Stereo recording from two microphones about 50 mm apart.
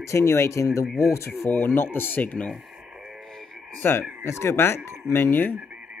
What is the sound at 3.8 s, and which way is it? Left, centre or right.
Speech, left.